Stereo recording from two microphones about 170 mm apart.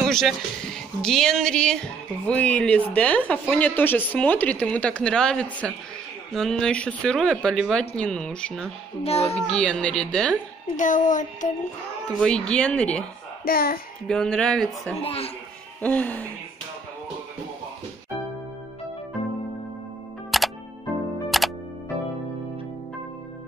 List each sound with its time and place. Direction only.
0.1 s speech: centre (ahead or behind)
9.0 s a child's voice: 35° left (ahead or behind)
9.5 s speech: 5° left (ahead or behind)
10.8 s child singing: 50° left (ahead or behind)
12.2 s speech: 5° left (ahead or behind)
13.5 s speech: 60° left (ahead or behind)
14.0 s speech: 5° left (ahead or behind)
15.0 s a child's voice: 35° left (ahead or behind)
15.8 s speech: 10° left (ahead or behind)
20.2 s music: centre (ahead or behind)